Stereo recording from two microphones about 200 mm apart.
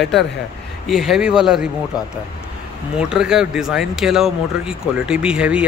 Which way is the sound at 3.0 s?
5° right (ahead or behind).